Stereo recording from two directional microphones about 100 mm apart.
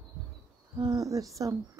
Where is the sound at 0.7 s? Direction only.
40° right (ahead or behind).